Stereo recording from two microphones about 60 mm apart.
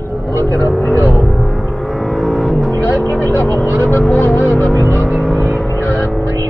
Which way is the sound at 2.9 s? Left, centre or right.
Left.